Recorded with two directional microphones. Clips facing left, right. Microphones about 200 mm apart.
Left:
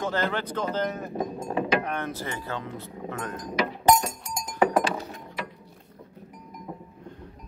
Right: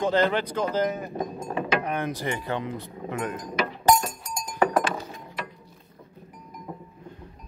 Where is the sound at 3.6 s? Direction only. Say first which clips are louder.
Even; 20° left (ahead or behind).